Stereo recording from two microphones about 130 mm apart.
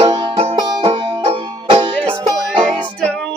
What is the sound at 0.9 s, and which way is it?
Banjo, 40° right (ahead or behind).